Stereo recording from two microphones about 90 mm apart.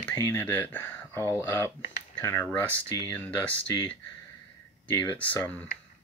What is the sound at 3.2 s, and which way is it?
Speech, 15° left (ahead or behind).